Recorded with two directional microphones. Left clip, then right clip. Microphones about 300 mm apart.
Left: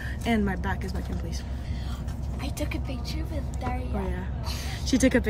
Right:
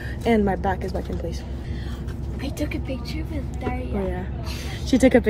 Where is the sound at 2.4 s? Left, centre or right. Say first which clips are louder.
Right 5 dB; centre.